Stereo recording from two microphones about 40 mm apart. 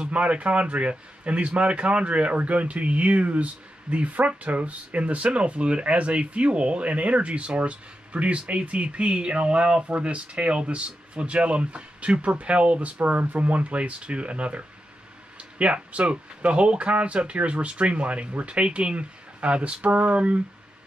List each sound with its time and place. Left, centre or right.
0.0 s speech: right
13.0 s speech: right
15.6 s speech: right